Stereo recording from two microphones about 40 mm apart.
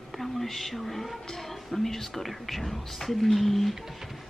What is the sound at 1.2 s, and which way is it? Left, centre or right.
Speech, centre.